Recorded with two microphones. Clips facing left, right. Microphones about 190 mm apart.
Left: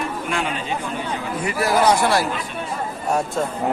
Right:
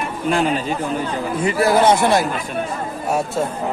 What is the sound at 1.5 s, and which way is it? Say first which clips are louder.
Speech: right 3 dB; 25° right (ahead or behind).